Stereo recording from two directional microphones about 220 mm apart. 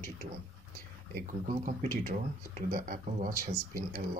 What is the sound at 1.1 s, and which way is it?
Speech, 35° right (ahead or behind).